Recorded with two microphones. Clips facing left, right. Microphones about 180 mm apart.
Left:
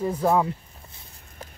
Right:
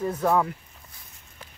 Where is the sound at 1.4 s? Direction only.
40° left (ahead or behind).